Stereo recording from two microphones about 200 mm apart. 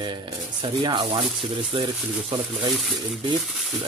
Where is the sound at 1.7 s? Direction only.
25° right (ahead or behind).